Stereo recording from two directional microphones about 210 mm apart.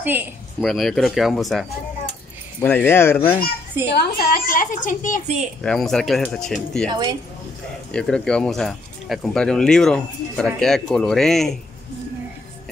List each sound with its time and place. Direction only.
0.0 s a woman's voice: 10° right (ahead or behind)
0.6 s speech: centre (ahead or behind)
3.9 s a woman's voice: 50° left (ahead or behind)
5.6 s speech: centre (ahead or behind)
6.9 s speech: 20° right (ahead or behind)
7.9 s speech: 5° left (ahead or behind)